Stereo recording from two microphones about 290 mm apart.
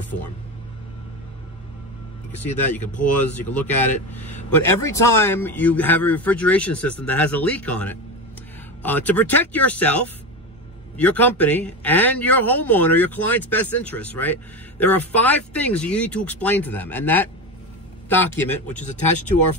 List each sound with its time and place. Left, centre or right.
3.3 s a man's voice: centre
18.7 s speech: left